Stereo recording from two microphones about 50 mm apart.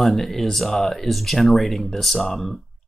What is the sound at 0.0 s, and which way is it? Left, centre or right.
Speech, centre.